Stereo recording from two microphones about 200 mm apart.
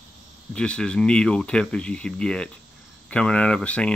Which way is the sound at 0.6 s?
5° left (ahead or behind).